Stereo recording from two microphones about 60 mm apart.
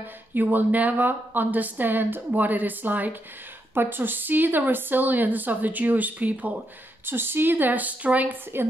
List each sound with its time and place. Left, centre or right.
0.3 s a woman's voice: right
7.1 s a woman's voice: right